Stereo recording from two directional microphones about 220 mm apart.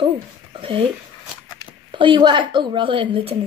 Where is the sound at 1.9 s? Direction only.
20° right (ahead or behind).